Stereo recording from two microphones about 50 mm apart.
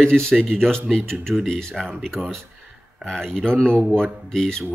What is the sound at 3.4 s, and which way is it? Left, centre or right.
Speech, centre.